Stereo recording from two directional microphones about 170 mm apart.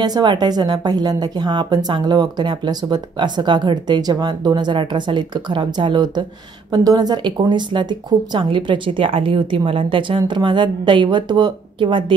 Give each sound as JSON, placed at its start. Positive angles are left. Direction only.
{"t": 0.0, "sound": "a woman's voice", "side_deg": -25}